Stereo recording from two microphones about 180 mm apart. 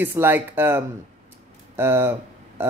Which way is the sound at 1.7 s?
10° right (ahead or behind).